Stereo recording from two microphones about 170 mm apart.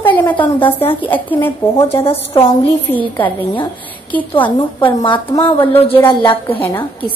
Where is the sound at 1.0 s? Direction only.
10° left (ahead or behind).